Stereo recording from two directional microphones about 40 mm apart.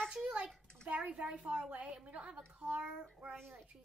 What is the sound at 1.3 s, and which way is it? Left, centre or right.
Speech, centre.